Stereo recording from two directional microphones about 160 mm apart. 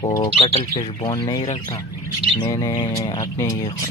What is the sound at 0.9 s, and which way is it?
Speech, 30° left (ahead or behind).